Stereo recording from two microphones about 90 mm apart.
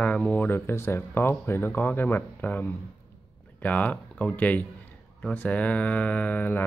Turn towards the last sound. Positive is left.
turn(degrees=20)  # may be behind; listen again after turning